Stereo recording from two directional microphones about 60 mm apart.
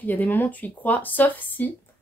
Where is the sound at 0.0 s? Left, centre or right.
Left.